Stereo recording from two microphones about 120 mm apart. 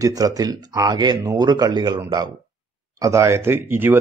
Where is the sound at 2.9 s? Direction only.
25° right (ahead or behind).